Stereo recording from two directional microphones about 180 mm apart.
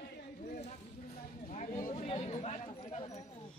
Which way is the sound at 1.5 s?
40° left (ahead or behind).